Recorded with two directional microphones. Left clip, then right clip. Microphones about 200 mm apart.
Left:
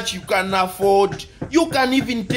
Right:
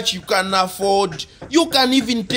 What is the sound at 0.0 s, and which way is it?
Speech, 25° right (ahead or behind).